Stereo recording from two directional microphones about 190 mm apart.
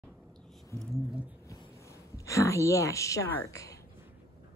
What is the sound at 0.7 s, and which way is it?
Speech, centre (ahead or behind).